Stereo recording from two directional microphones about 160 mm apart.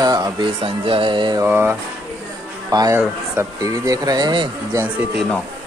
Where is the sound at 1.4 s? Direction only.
10° right (ahead or behind).